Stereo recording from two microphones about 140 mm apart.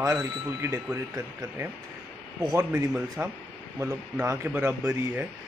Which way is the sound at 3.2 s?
15° right (ahead or behind).